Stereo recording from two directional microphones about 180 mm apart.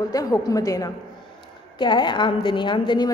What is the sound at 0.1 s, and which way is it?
A woman's voice, 20° left (ahead or behind).